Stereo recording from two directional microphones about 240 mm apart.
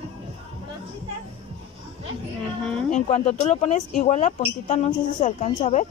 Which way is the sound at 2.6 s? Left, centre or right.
Centre.